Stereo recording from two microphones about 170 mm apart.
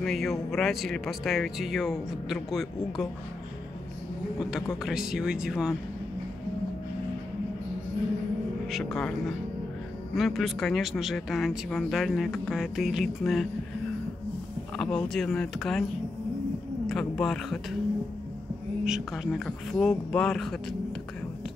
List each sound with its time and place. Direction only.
0.0 s speech: centre (ahead or behind)
4.4 s speech: 5° right (ahead or behind)
8.6 s speech: centre (ahead or behind)
10.1 s speech: centre (ahead or behind)
14.8 s speech: 5° left (ahead or behind)
16.8 s speech: 5° left (ahead or behind)
18.9 s speech: 5° right (ahead or behind)